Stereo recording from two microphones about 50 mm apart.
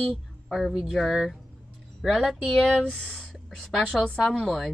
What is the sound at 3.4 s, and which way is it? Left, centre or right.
A woman's voice, centre.